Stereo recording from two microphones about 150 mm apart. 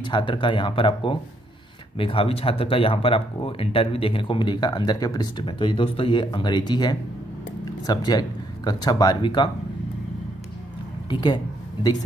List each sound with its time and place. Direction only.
0.0 s speech: 30° left (ahead or behind)
11.1 s speech: 30° left (ahead or behind)